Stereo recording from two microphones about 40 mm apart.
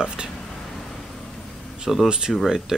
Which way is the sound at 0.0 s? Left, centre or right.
Right.